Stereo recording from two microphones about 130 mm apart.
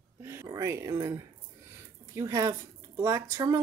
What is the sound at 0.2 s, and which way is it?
Speech, 20° right (ahead or behind).